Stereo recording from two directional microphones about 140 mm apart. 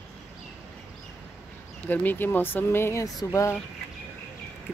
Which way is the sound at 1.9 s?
15° left (ahead or behind).